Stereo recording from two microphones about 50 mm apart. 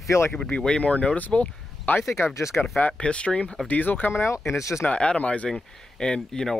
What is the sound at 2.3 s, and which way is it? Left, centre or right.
Speech, left.